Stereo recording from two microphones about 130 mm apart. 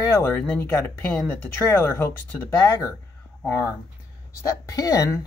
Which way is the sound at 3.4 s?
15° left (ahead or behind).